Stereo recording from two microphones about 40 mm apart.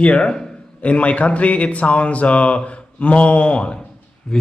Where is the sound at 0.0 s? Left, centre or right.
Left.